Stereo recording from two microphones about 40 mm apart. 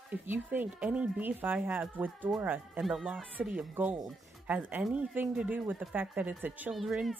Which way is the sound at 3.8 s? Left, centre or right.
Right.